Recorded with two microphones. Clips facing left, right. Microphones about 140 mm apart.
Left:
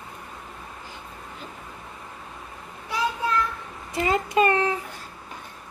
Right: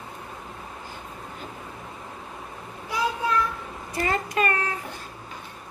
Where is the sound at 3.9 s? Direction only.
20° left (ahead or behind).